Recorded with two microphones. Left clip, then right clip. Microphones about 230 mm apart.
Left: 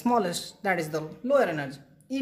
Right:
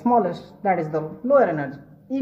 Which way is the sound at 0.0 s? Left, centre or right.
Left.